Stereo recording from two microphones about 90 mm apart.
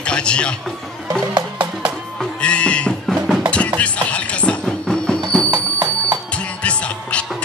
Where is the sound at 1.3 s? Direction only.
50° right (ahead or behind).